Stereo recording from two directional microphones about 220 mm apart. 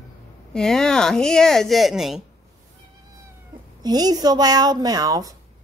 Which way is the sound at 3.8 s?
20° right (ahead or behind).